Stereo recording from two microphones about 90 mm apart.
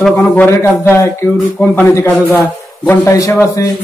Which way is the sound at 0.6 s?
25° left (ahead or behind).